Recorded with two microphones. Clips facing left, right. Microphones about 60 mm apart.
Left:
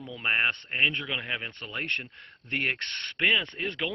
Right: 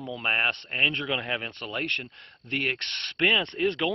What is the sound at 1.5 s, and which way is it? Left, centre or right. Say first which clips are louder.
Speech: right 2 dB; centre.